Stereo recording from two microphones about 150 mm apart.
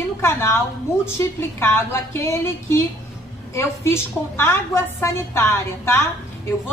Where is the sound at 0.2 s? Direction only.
15° left (ahead or behind).